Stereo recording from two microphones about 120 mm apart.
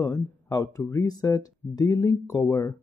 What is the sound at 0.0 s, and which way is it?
Speech, 25° left (ahead or behind).